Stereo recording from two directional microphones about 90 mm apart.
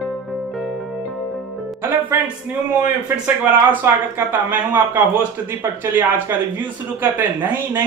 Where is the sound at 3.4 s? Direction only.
20° right (ahead or behind).